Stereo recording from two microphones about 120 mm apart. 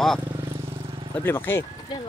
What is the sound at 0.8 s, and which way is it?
Vehicle, 50° right (ahead or behind).